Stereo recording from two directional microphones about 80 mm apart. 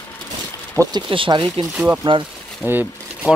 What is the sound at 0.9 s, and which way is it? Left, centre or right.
Speech, right.